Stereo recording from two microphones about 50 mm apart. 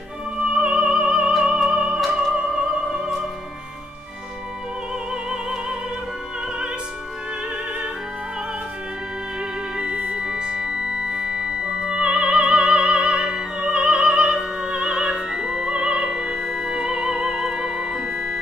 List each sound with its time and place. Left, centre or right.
0.4 s music: right
1.3 s music: centre
10.1 s music: centre